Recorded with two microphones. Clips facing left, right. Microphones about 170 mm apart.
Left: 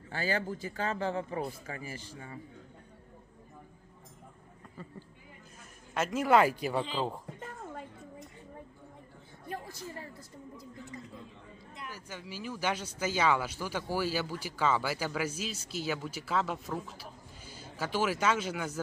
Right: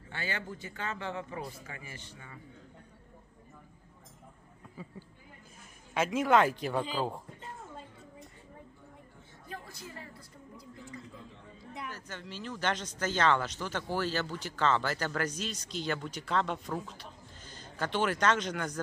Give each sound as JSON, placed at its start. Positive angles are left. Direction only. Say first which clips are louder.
{"t": 0.1, "sound": "speech", "louder": "left 6 dB", "side_deg": 35}
{"t": 5.9, "sound": "a man's voice", "louder": "even", "side_deg": 0}
{"t": 11.9, "sound": "speech", "louder": "even", "side_deg": 10}